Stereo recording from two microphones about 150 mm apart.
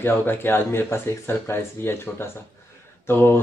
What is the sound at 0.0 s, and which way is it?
Speech, 15° left (ahead or behind).